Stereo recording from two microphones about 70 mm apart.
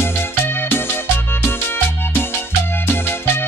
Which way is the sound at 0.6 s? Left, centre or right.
Left.